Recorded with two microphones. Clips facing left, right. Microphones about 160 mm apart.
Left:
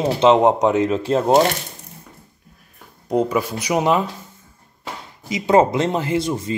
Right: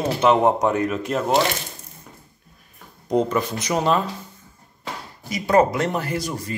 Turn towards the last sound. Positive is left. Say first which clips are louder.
# left 5 dB
turn(degrees=25)  # may be behind; listen again after turning